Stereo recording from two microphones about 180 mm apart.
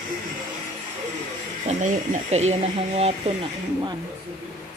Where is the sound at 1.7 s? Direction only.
40° right (ahead or behind).